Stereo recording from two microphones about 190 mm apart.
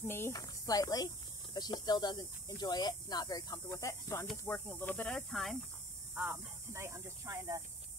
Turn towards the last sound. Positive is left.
turn(degrees=-15)  # may be behind; listen again after turning